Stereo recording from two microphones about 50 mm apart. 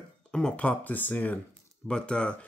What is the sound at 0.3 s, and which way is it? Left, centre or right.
Speech, centre.